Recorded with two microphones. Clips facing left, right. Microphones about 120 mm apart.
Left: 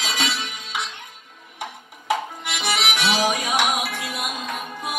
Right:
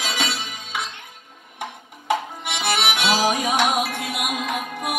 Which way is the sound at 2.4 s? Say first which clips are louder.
Right 2 dB; 50° right (ahead or behind).